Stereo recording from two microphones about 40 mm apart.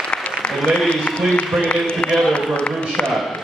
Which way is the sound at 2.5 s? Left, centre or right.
Left.